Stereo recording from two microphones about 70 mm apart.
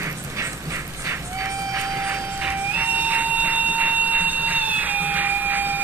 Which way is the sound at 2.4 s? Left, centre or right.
Right.